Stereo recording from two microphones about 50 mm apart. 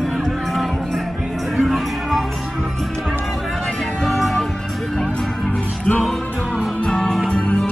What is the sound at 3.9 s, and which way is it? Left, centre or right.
Music, centre.